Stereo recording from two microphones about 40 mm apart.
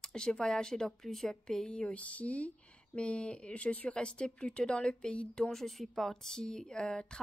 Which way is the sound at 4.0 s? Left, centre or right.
Left.